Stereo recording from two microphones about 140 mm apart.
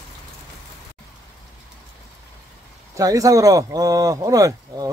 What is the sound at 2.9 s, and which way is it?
Speech, 25° right (ahead or behind).